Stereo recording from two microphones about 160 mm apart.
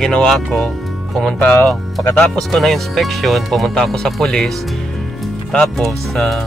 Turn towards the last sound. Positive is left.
turn(degrees=0)  # may be behind; listen again after turning